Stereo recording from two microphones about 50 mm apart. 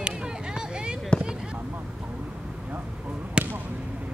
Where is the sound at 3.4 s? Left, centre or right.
Right.